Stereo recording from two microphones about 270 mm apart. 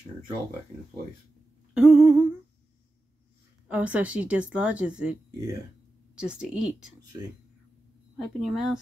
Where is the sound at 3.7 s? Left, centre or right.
Centre.